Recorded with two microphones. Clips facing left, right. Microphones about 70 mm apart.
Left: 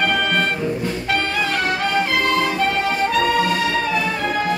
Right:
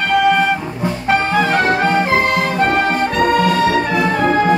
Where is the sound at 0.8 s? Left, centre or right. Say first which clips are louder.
Right 5 dB; right.